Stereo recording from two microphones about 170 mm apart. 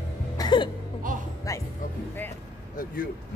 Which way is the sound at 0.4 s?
25° left (ahead or behind).